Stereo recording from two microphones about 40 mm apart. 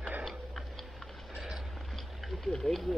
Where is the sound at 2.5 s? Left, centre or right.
Centre.